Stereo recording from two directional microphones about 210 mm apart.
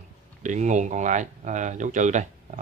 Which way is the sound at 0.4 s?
35° right (ahead or behind).